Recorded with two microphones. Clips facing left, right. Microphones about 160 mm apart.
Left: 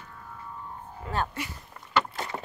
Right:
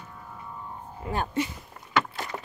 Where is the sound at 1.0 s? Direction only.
15° right (ahead or behind).